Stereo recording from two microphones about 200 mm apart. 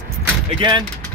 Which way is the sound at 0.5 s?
20° right (ahead or behind).